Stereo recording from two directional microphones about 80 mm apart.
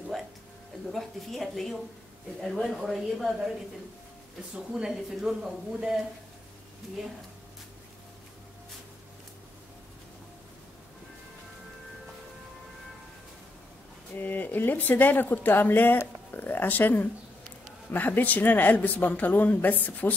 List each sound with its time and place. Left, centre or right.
0.9 s speech: centre
4.6 s speech: centre
14.1 s a woman's voice: left